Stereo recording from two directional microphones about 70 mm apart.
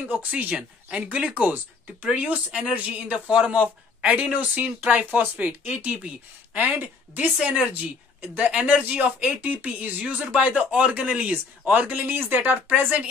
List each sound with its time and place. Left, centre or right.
0.0 s a woman's voice: right